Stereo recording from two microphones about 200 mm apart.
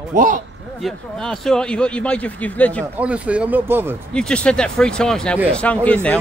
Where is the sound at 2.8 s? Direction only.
10° right (ahead or behind).